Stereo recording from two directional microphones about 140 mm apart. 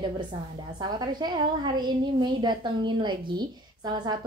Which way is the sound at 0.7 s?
30° right (ahead or behind).